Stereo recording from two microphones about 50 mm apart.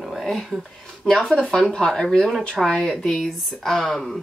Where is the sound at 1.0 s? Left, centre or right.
Centre.